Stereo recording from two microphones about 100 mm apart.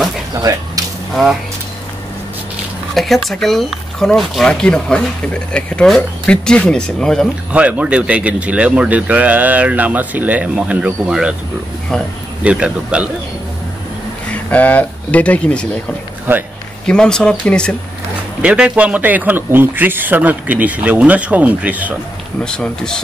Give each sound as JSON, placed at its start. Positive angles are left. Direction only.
{"t": 0.3, "sound": "a sound", "side_deg": -40}
{"t": 2.9, "sound": "speech", "side_deg": 0}
{"t": 7.5, "sound": "a man's voice", "side_deg": -15}
{"t": 12.4, "sound": "a man's voice", "side_deg": -10}
{"t": 14.3, "sound": "speech", "side_deg": 15}
{"t": 16.8, "sound": "speech", "side_deg": 10}
{"t": 18.4, "sound": "a man's voice", "side_deg": -10}
{"t": 22.4, "sound": "speech", "side_deg": 5}